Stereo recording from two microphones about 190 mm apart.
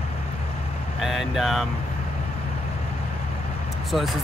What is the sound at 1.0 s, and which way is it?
Speech, centre (ahead or behind).